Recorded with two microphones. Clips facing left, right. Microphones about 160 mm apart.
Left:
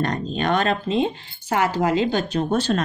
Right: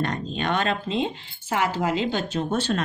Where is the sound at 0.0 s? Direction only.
40° left (ahead or behind).